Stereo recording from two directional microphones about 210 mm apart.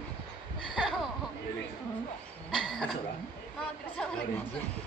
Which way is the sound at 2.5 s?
Centre (ahead or behind).